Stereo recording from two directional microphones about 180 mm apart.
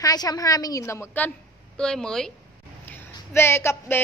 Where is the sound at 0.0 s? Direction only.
20° left (ahead or behind); by 2.3 s 5° left (ahead or behind).